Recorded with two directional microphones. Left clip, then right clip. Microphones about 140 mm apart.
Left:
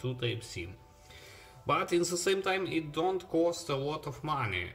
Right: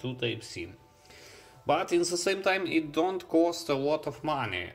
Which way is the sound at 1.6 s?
15° right (ahead or behind).